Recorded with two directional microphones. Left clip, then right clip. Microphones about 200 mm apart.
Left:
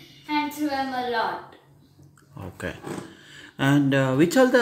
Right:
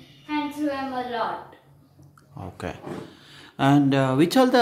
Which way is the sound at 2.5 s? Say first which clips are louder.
Left 1 dB; 10° right (ahead or behind).